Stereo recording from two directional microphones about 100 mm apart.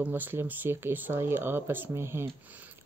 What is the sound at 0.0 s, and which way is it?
Speech, 20° right (ahead or behind).